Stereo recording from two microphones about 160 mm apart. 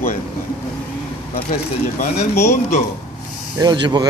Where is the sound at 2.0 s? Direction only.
45° left (ahead or behind).